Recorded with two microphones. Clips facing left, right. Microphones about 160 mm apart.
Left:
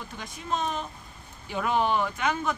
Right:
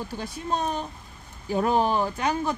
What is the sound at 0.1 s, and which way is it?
Speech, 35° right (ahead or behind).